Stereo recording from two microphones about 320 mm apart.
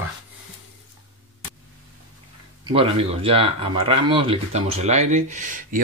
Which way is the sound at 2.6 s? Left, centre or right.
Centre.